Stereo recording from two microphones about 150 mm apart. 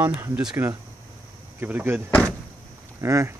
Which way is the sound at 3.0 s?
20° right (ahead or behind).